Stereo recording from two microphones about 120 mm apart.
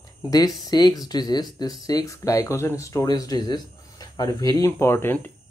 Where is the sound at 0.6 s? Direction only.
35° left (ahead or behind).